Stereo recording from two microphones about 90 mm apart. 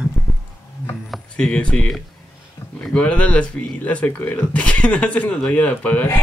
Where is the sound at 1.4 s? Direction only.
10° left (ahead or behind).